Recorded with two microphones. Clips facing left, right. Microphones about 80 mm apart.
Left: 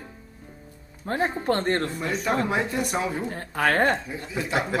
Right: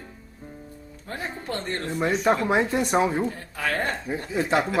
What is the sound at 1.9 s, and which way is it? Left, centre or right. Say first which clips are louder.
Speech: right 3 dB; right.